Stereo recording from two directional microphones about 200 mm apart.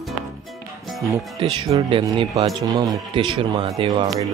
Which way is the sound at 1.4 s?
25° right (ahead or behind).